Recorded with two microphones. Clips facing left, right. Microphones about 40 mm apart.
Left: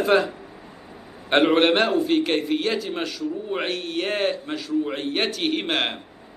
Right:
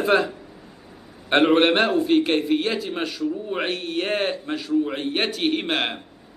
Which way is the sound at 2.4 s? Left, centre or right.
Centre.